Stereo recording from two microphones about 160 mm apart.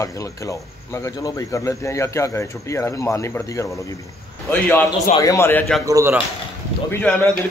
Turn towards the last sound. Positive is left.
turn(degrees=15)  # may be behind; listen again after turning